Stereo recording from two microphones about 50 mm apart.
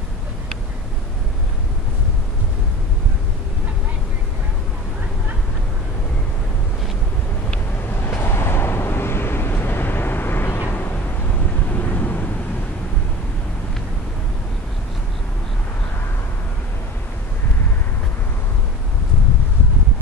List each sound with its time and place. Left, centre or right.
8.0 s vehicle: left